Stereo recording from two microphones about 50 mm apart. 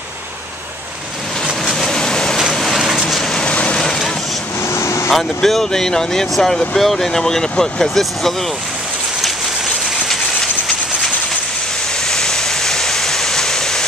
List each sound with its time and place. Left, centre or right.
1.7 s vehicle: centre
3.4 s vehicle: left
4.7 s vehicle: left
5.1 s speech: centre
12.1 s waterfall: centre